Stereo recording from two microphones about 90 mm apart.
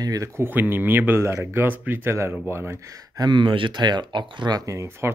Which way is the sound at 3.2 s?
60° right (ahead or behind).